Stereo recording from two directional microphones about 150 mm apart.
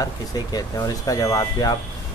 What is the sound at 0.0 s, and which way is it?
Speech, 25° left (ahead or behind).